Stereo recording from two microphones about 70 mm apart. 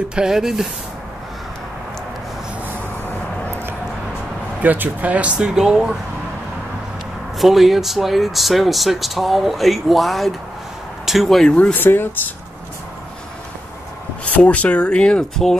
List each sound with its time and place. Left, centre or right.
0.1 s speech: centre
4.6 s speech: right; by 5.9 s centre
7.3 s speech: centre
11.7 s speech: left
14.3 s speech: left